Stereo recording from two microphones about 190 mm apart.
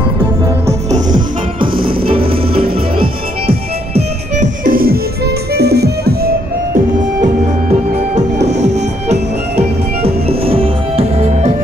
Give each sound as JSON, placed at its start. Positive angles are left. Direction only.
{"t": 0.8, "sound": "music", "side_deg": -40}
{"t": 2.0, "sound": "music", "side_deg": -30}
{"t": 4.6, "sound": "music", "side_deg": -50}
{"t": 7.9, "sound": "music", "side_deg": -35}